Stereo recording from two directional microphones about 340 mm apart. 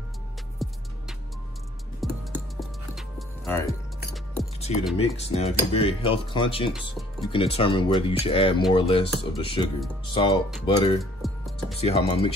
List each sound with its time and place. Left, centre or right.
0.6 s music: centre
2.0 s music: centre
4.6 s music: centre
4.9 s cutlery: centre
11.0 s music: centre
11.8 s cutlery: centre